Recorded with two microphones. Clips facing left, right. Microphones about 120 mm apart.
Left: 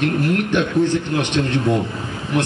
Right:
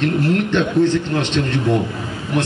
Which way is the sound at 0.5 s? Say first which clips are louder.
Right 2 dB; 15° left (ahead or behind).